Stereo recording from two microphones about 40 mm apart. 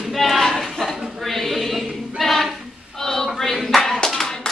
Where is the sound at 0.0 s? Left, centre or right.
Centre.